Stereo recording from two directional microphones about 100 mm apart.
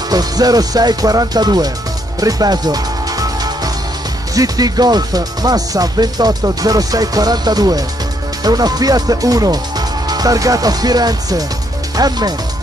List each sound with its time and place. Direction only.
0.1 s speech: 40° right (ahead or behind)
2.1 s music: 40° right (ahead or behind)
4.3 s speech: 40° right (ahead or behind)